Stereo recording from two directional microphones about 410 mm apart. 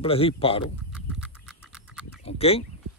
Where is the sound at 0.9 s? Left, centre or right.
Centre.